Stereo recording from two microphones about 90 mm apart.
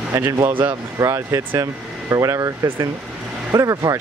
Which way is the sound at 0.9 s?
35° right (ahead or behind).